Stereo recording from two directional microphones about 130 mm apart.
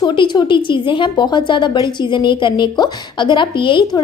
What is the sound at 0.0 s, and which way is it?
A woman's voice, 35° left (ahead or behind).